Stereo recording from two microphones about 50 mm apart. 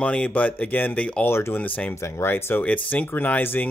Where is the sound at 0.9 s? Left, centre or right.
Left.